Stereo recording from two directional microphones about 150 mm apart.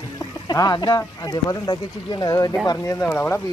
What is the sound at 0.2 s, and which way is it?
Speech, 25° left (ahead or behind).